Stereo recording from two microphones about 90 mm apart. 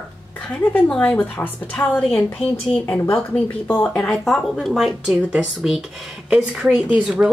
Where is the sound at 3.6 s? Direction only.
15° left (ahead or behind).